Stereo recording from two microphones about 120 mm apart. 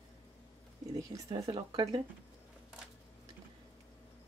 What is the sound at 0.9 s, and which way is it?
Speech, 30° right (ahead or behind).